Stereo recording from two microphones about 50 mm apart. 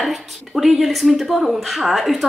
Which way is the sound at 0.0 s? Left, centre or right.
Centre.